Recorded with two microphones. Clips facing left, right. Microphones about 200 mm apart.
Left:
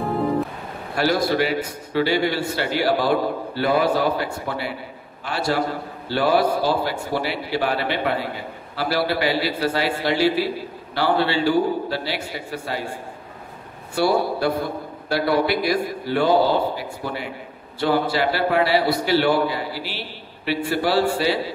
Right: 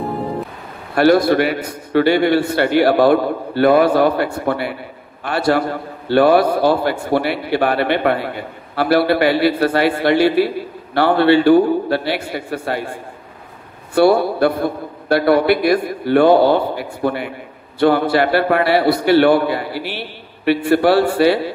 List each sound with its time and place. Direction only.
0.9 s a man's voice: 60° right (ahead or behind)
13.9 s a man's voice: 60° right (ahead or behind)